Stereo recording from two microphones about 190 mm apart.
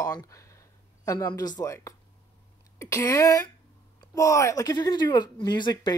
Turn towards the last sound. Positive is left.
turn(degrees=25)  # may be behind; listen again after turning